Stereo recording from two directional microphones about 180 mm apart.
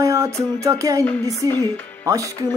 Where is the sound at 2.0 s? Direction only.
20° right (ahead or behind).